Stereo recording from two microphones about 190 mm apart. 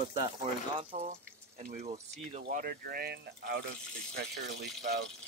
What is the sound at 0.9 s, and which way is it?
Speech, 35° right (ahead or behind).